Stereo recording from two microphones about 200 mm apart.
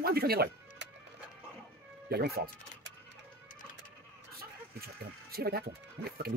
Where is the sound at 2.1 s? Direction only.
50° right (ahead or behind).